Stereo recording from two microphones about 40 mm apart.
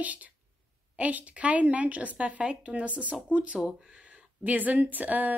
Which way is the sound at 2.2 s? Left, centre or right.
Right.